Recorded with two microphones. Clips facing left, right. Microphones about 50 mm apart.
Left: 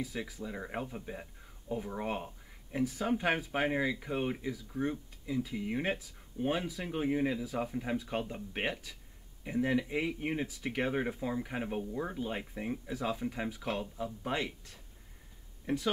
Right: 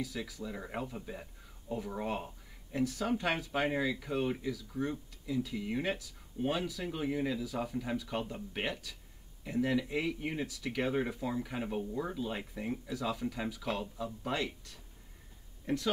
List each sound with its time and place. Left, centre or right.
0.0 s speech: left
3.9 s speech: left
14.2 s speech: left